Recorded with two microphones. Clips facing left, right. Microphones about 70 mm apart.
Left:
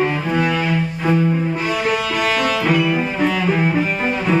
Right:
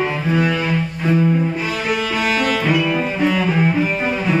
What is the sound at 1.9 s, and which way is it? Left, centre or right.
Cello, centre.